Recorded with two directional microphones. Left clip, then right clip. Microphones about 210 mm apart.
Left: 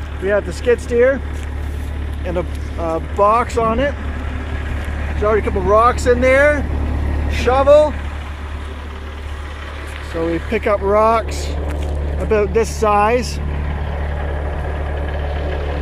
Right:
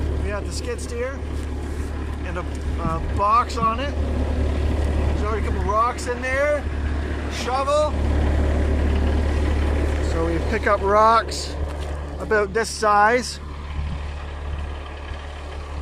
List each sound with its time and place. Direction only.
0.3 s speech: 45° left (ahead or behind)
2.3 s speech: 30° left (ahead or behind)
5.3 s speech: 45° left (ahead or behind)
10.5 s speech: 10° left (ahead or behind)
12.3 s speech: 10° left (ahead or behind)